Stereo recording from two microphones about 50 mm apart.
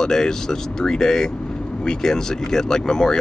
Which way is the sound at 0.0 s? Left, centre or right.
Centre.